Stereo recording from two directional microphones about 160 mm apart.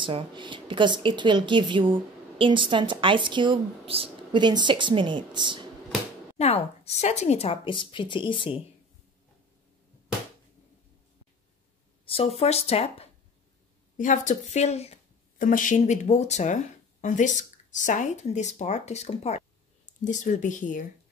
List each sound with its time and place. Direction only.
0.0 s a woman's voice: 30° right (ahead or behind)
6.3 s speech: 40° left (ahead or behind)
12.1 s speech: 40° left (ahead or behind)
13.9 s speech: 55° left (ahead or behind)
15.3 s speech: 55° left (ahead or behind)